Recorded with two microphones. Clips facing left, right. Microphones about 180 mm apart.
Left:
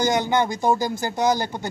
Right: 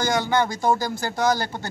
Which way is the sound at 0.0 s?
20° left (ahead or behind).